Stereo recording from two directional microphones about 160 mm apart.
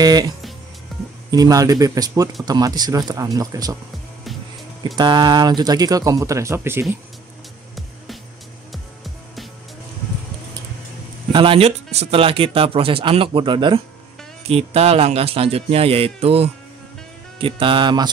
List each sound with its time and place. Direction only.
0.0 s speech: 25° right (ahead or behind)
0.9 s music: centre (ahead or behind)
1.3 s speech: 20° right (ahead or behind)
4.8 s speech: 30° right (ahead or behind)
8.7 s music: centre (ahead or behind)
11.3 s speech: 35° right (ahead or behind)